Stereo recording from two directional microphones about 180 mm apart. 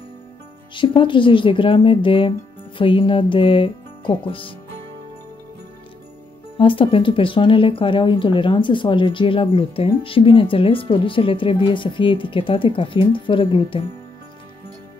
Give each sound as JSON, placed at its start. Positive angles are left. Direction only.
{"t": 0.7, "sound": "speech", "side_deg": 30}
{"t": 6.6, "sound": "speech", "side_deg": 30}